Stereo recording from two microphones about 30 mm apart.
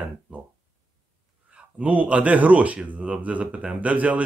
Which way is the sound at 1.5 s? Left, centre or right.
Right.